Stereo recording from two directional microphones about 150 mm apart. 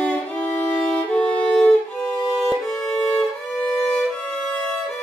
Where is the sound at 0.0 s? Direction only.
10° left (ahead or behind).